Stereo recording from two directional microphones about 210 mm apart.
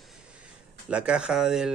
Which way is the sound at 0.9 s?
5° right (ahead or behind).